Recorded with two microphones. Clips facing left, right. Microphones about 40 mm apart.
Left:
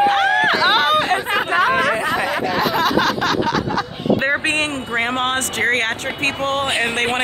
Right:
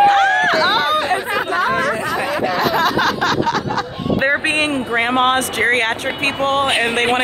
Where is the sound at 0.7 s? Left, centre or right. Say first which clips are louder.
Left 1 dB; left.